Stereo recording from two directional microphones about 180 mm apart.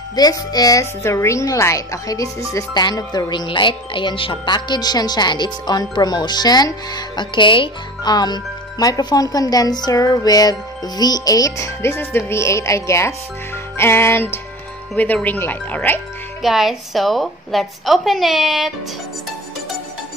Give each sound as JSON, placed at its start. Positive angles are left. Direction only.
{"t": 0.1, "sound": "a woman's voice", "side_deg": 20}
{"t": 16.4, "sound": "a woman's voice", "side_deg": 0}